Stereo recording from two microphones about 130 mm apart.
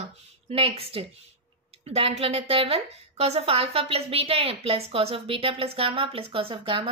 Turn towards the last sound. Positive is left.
turn(degrees=-40)  # may be behind; listen again after turning